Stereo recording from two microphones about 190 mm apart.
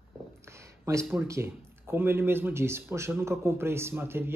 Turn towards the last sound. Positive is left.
turn(degrees=-10)  # may be behind; listen again after turning